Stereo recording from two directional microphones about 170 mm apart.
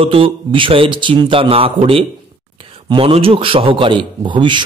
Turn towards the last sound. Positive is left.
turn(degrees=-30)  # may be behind; listen again after turning